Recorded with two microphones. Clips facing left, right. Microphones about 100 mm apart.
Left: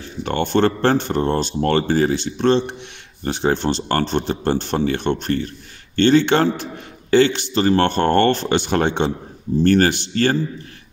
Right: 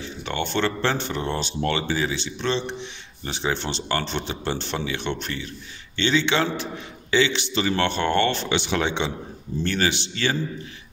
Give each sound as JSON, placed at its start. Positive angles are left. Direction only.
{"t": 0.0, "sound": "a man's voice", "side_deg": 45}